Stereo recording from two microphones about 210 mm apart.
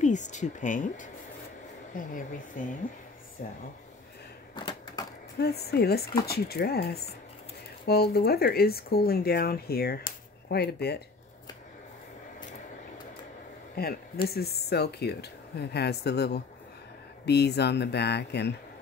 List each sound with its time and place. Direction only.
0.0 s speech: 35° left (ahead or behind)
4.6 s typewriter: 20° left (ahead or behind)
5.4 s speech: 50° left (ahead or behind)
13.8 s speech: 45° left (ahead or behind)